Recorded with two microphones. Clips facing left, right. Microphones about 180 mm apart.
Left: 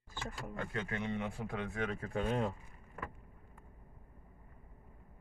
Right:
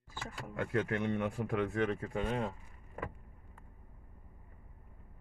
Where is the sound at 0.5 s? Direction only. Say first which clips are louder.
Right 7 dB; 70° right (ahead or behind).